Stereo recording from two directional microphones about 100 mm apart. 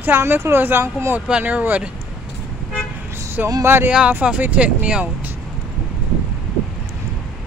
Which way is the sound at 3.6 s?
25° right (ahead or behind).